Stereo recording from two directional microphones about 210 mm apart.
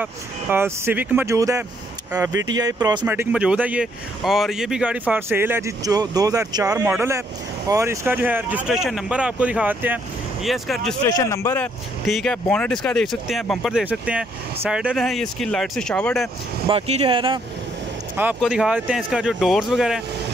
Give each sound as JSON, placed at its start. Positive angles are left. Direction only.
{"t": 0.0, "sound": "speech", "side_deg": -10}
{"t": 3.1, "sound": "speech", "side_deg": -10}
{"t": 11.1, "sound": "speech", "side_deg": 15}
{"t": 16.6, "sound": "speech", "side_deg": -30}
{"t": 18.1, "sound": "speech", "side_deg": -5}